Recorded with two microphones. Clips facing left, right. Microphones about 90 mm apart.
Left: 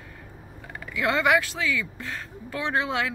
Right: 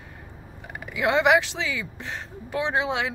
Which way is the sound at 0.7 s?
20° right (ahead or behind).